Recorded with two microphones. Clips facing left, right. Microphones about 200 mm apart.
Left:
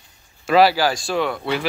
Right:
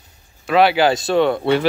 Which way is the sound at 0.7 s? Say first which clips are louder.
Right 5 dB; 25° right (ahead or behind).